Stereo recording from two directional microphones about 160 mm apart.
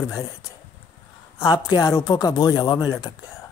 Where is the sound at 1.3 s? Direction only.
25° left (ahead or behind).